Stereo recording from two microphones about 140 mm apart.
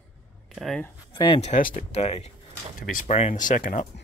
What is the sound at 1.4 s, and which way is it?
Speech, 70° left (ahead or behind).